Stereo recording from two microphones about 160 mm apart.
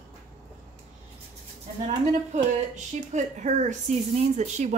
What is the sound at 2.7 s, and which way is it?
Speech, 50° right (ahead or behind).